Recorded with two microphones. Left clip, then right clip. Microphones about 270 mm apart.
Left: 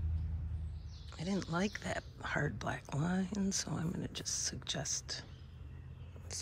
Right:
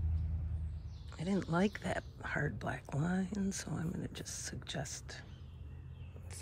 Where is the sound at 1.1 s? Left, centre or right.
Centre.